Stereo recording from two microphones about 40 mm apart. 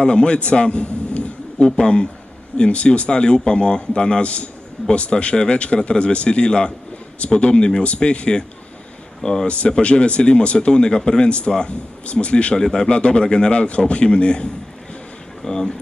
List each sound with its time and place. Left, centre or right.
0.0 s a man's voice: left
1.6 s speech: left
9.2 s a man's voice: centre
9.5 s a man's voice: left
11.2 s speech: left
12.5 s a man's voice: centre
12.9 s speech: left
13.5 s speech: left
15.4 s speech: centre